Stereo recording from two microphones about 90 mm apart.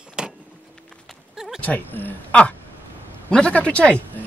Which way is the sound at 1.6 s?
20° left (ahead or behind).